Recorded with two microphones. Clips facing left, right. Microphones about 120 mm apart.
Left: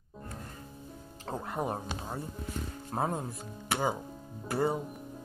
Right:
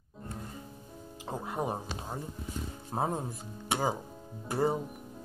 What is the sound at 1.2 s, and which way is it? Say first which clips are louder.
Speech: even; 10° right (ahead or behind).